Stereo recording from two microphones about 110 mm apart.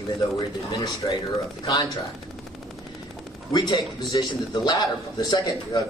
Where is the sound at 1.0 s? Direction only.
40° left (ahead or behind).